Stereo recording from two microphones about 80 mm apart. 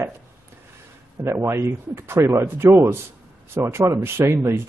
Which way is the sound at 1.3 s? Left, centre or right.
Right.